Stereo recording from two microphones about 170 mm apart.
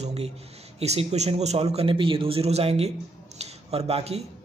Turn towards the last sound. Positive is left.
turn(degrees=-35)  # may be behind; listen again after turning